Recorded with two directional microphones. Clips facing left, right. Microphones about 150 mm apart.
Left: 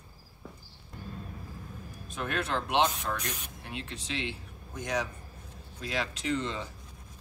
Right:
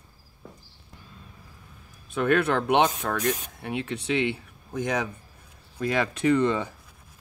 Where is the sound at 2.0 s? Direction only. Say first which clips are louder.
Right 11 dB; 60° right (ahead or behind).